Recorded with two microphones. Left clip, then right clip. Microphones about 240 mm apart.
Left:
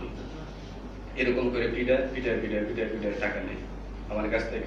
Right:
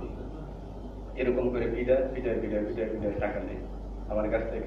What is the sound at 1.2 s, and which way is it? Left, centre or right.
A man's voice, left.